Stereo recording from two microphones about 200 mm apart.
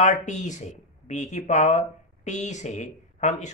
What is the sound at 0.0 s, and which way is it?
A man's voice, 35° left (ahead or behind).